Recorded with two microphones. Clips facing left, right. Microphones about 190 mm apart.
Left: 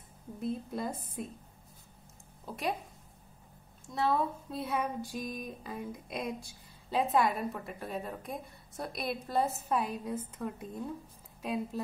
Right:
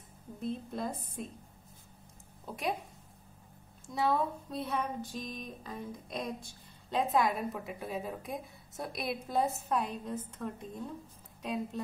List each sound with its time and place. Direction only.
0.4 s speech: 5° left (ahead or behind)
2.4 s speech: centre (ahead or behind)
3.8 s a woman's voice: centre (ahead or behind)